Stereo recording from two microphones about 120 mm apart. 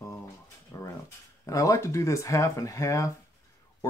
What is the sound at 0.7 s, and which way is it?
Dog, 25° left (ahead or behind).